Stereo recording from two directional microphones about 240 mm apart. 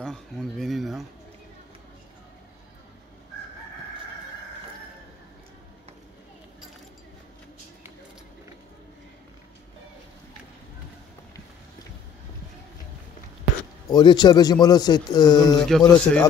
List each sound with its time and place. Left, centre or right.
0.0 s speech: centre
13.8 s speech: centre
15.6 s speech: centre